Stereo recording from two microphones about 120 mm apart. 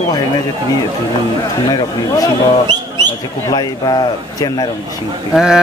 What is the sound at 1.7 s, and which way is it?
Speech, 30° left (ahead or behind).